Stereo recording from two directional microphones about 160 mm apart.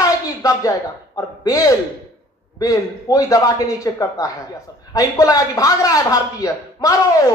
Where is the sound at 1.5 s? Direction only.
20° left (ahead or behind).